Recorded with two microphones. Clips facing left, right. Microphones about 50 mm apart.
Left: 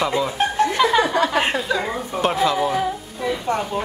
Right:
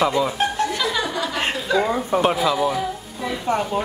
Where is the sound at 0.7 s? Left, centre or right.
Left.